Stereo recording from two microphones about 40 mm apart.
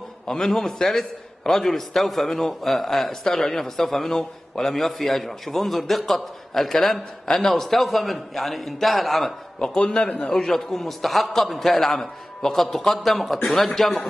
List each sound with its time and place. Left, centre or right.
0.3 s a man's voice: centre
9.6 s a man's voice: centre